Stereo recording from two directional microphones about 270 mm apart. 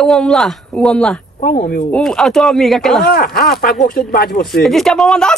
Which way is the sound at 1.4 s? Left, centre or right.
Left.